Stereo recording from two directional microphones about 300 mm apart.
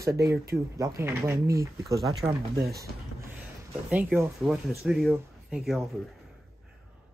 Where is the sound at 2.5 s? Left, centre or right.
Right.